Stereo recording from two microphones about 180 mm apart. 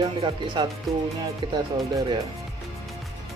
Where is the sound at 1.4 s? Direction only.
25° right (ahead or behind).